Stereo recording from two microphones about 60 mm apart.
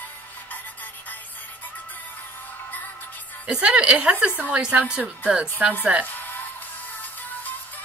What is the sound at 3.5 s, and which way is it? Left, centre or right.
A woman's voice, centre.